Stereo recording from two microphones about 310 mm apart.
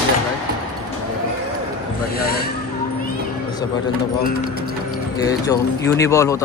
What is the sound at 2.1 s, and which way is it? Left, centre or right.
Speech, left.